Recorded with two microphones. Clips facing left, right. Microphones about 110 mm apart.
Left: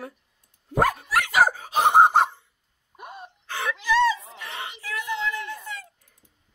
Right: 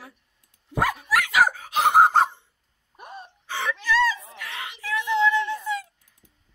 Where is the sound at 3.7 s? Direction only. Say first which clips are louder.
Left 2 dB; 15° left (ahead or behind).